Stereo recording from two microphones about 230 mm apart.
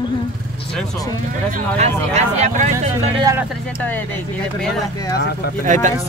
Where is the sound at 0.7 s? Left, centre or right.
Centre.